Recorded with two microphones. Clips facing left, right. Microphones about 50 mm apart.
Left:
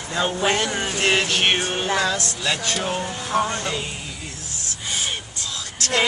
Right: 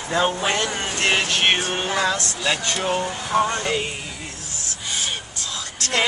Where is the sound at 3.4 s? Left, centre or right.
Centre.